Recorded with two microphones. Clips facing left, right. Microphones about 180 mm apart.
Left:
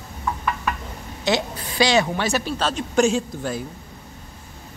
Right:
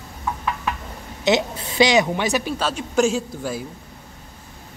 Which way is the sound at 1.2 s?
20° right (ahead or behind).